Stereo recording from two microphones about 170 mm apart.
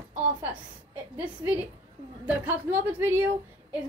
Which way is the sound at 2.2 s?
10° right (ahead or behind).